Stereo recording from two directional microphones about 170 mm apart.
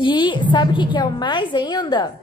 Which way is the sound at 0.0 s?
30° left (ahead or behind).